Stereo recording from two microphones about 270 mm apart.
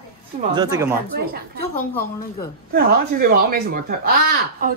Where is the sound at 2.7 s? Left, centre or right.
Right.